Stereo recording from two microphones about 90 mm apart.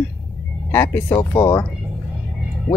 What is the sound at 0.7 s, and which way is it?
Speech, 25° left (ahead or behind).